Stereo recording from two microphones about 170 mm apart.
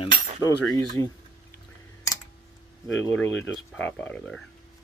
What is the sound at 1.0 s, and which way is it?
Speech, 15° left (ahead or behind).